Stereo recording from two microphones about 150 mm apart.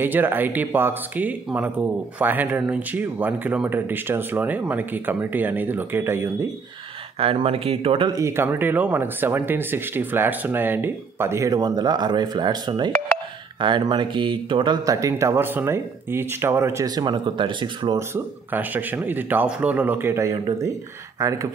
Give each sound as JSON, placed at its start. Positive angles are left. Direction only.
{"t": 0.0, "sound": "speech", "side_deg": -15}
{"t": 7.2, "sound": "speech", "side_deg": -40}
{"t": 8.1, "sound": "speech", "side_deg": -20}
{"t": 17.9, "sound": "speech", "side_deg": -15}